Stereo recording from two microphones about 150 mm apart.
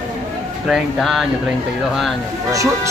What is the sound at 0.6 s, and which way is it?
Speech, centre (ahead or behind).